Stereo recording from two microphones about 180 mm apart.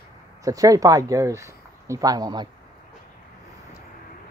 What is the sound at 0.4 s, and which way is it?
Speech, 20° right (ahead or behind).